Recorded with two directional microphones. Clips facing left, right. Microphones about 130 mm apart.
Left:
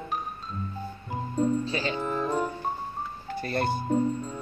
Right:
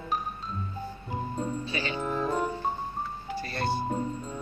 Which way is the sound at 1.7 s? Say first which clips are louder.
Left 3 dB; 35° left (ahead or behind).